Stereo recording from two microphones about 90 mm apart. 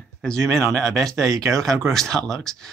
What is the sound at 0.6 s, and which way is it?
Speech, 30° right (ahead or behind).